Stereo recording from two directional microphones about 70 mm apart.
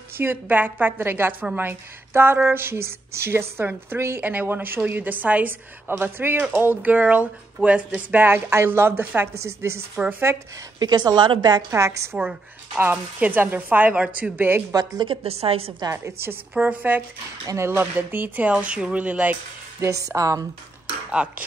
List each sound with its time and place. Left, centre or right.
0.2 s a woman's voice: right
8.2 s a woman's voice: right
10.8 s a woman's voice: right
11.7 s speech: right
12.7 s speech: right
14.3 s speech: right
14.7 s a woman's voice: right
15.9 s a woman's voice: right
16.5 s speech: right
19.8 s speech: right
21.1 s speech: centre